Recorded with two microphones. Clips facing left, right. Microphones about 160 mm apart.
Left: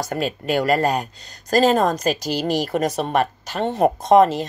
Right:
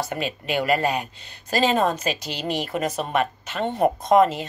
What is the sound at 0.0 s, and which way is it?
Speech, 40° left (ahead or behind).